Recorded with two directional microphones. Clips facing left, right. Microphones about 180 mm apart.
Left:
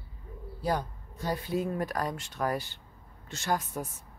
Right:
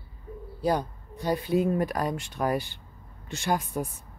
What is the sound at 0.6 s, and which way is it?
Speech, 20° right (ahead or behind).